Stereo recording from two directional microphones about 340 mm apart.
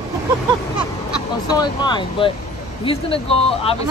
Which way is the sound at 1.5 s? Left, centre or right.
Centre.